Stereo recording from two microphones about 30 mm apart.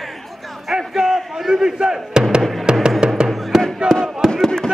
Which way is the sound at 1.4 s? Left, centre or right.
Centre.